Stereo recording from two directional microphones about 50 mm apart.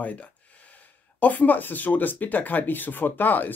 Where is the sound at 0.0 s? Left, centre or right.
Left.